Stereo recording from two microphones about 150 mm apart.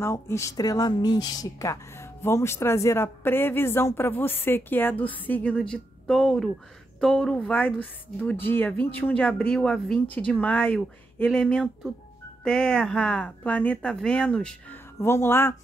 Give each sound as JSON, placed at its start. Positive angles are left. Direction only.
{"t": 0.0, "sound": "speech", "side_deg": 20}
{"t": 11.2, "sound": "speech", "side_deg": 0}
{"t": 15.0, "sound": "speech", "side_deg": 15}